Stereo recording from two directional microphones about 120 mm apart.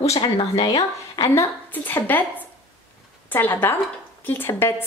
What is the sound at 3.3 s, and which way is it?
Speech, 15° left (ahead or behind).